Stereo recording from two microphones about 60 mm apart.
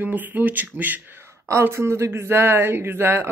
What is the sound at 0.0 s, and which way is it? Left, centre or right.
Speech, right.